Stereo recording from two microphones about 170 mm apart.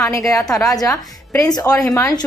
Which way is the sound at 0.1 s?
20° left (ahead or behind).